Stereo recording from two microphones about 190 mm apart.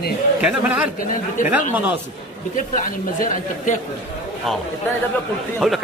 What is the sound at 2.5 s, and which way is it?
Speech, 45° left (ahead or behind).